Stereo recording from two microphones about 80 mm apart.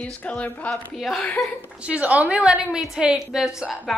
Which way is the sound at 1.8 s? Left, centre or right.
Centre.